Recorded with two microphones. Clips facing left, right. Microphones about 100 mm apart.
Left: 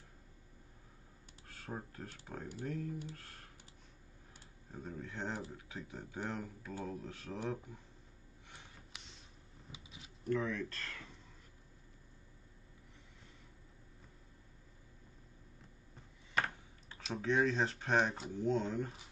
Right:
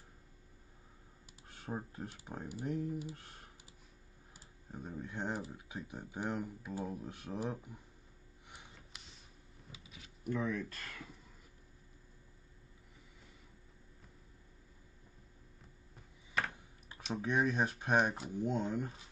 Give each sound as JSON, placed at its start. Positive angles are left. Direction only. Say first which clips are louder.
{"t": 1.5, "sound": "speech", "louder": "right 3 dB", "side_deg": -20}
{"t": 4.6, "sound": "speech", "louder": "right 1 dB", "side_deg": -15}
{"t": 8.9, "sound": "a sound", "louder": "left 2 dB", "side_deg": 0}
{"t": 9.7, "sound": "a sound", "louder": "left 1 dB", "side_deg": 25}
{"t": 10.2, "sound": "speech", "louder": "left 1 dB", "side_deg": -10}
{"t": 16.9, "sound": "speech", "louder": "left 1 dB", "side_deg": -10}